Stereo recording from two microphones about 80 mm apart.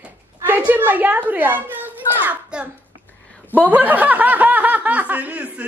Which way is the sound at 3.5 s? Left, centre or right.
Right.